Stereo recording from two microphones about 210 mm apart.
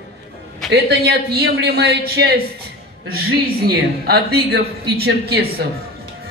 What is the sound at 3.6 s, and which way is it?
A man's voice, 50° right (ahead or behind).